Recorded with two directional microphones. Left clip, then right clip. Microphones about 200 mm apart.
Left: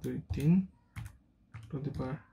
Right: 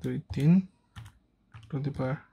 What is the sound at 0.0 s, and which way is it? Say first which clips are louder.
Speech: right 4 dB; 50° right (ahead or behind).